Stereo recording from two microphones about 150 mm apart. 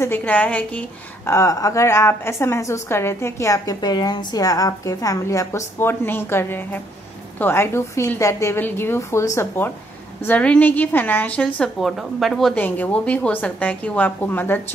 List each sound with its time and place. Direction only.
0.0 s a woman's voice: 10° left (ahead or behind)